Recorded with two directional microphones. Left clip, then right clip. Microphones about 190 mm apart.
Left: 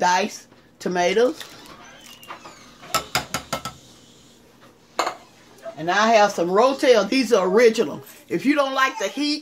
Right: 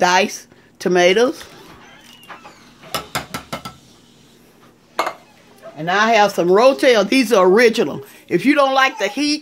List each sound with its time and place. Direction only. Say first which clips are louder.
0.0 s speech: right 5 dB; 40° right (ahead or behind)
2.9 s a sound: left 1 dB; 10° right (ahead or behind)
5.9 s speech: right 3 dB; 55° right (ahead or behind); by 9.4 s 35° right (ahead or behind)